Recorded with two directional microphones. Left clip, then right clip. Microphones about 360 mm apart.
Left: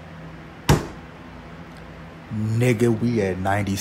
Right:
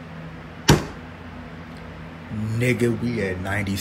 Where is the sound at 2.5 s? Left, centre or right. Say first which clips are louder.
Left 2 dB; centre.